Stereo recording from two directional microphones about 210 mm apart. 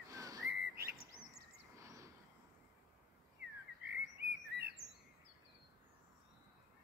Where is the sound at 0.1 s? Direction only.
15° right (ahead or behind).